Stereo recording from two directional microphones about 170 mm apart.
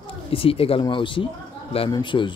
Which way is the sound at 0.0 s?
30° left (ahead or behind).